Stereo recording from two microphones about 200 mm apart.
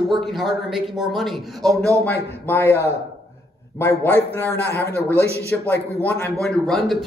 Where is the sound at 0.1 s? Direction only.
Centre (ahead or behind).